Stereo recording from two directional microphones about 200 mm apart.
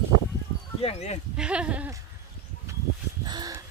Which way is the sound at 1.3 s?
5° right (ahead or behind).